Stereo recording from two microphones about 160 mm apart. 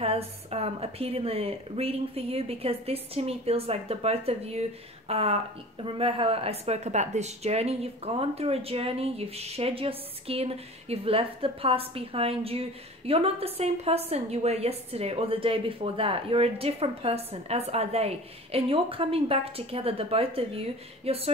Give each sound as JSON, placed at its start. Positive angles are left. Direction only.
{"t": 0.0, "sound": "speech", "side_deg": -40}